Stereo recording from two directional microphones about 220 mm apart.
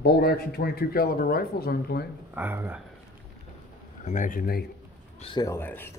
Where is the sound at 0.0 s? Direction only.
45° left (ahead or behind).